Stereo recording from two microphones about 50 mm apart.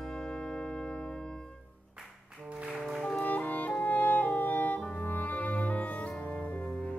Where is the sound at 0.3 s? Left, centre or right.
Centre.